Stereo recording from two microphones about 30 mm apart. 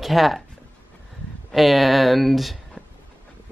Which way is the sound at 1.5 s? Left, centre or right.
Centre.